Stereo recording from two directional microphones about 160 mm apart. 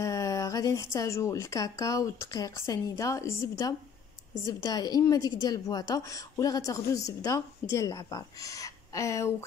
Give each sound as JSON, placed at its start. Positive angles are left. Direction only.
{"t": 0.0, "sound": "a woman's voice", "side_deg": 20}